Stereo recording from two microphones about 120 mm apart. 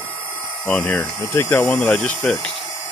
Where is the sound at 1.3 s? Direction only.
20° left (ahead or behind).